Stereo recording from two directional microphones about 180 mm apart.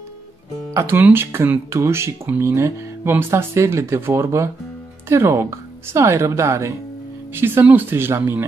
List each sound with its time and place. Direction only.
0.7 s speech: 10° right (ahead or behind)